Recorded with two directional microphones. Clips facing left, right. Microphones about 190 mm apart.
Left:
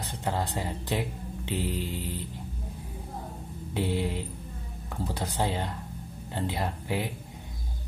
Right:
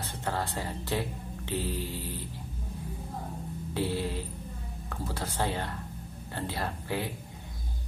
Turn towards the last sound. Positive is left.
turn(degrees=15)  # may be behind; listen again after turning